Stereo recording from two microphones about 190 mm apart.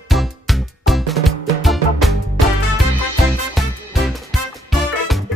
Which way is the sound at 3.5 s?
Centre (ahead or behind).